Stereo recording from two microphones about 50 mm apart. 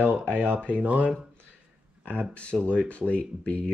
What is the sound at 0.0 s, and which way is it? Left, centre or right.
Speech, right.